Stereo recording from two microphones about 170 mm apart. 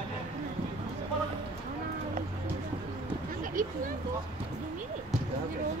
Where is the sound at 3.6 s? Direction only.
55° right (ahead or behind).